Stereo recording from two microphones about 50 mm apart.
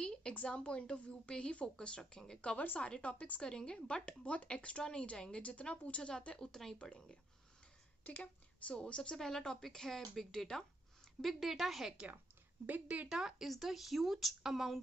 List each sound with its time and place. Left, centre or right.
0.0 s a woman's voice: centre
6.8 s a woman's voice: left
9.1 s speech: centre
12.8 s speech: right
13.1 s speech: centre